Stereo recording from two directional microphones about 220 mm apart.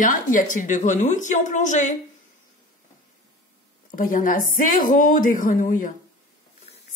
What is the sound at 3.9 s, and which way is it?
A woman's voice, 35° left (ahead or behind).